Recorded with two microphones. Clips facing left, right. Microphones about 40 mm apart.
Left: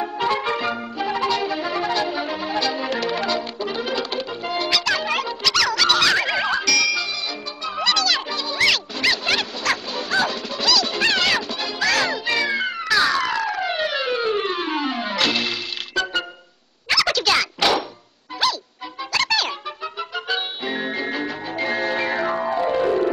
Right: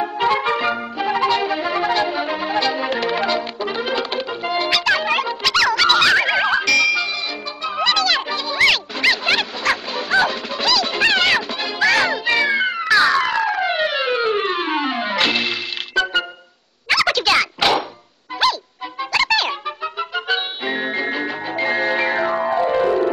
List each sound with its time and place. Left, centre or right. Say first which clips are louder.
0.0 s music: right 4 dB; centre
16.9 s a sound: right 3 dB; centre
18.4 s music: right 4 dB; right